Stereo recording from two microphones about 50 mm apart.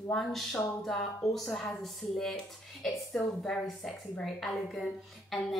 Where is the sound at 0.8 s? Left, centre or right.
Centre.